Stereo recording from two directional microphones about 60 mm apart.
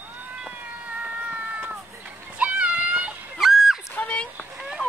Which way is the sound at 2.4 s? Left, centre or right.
Right.